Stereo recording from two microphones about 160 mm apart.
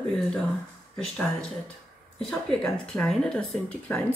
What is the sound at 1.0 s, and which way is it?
Speech, 5° left (ahead or behind).